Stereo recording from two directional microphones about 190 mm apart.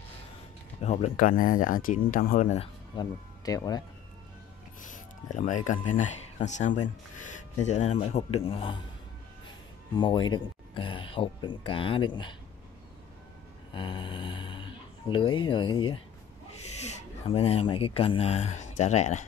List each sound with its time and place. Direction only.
0.8 s speech: 35° left (ahead or behind)
3.0 s speech: 20° left (ahead or behind)
4.8 s speech: 40° left (ahead or behind)
9.9 s speech: 25° left (ahead or behind)
13.7 s speech: 25° left (ahead or behind)